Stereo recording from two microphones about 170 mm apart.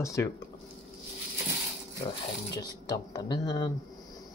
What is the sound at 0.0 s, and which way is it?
Speech, 20° left (ahead or behind).